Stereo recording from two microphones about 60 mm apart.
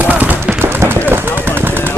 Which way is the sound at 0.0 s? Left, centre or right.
Right.